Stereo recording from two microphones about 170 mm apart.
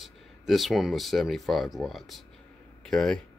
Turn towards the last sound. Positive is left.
turn(degrees=5)  # may be behind; listen again after turning